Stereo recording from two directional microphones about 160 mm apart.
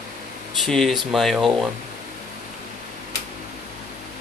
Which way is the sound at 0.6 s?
Centre (ahead or behind).